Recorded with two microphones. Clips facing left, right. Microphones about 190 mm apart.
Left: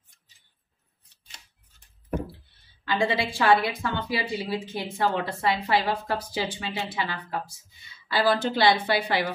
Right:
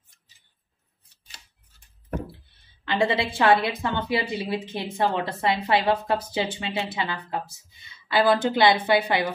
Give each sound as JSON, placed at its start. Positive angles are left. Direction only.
{"t": 2.9, "sound": "a woman's voice", "side_deg": -20}